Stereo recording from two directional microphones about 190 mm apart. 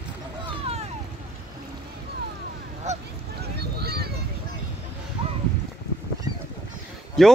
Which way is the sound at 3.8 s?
55° right (ahead or behind).